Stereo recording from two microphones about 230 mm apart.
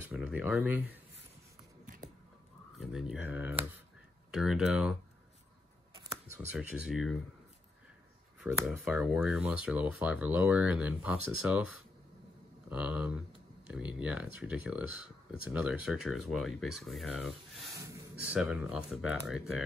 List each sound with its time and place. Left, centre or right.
0.1 s speech: centre
1.9 s scissors: right
2.8 s speech: centre
6.3 s speech: centre
8.4 s speech: centre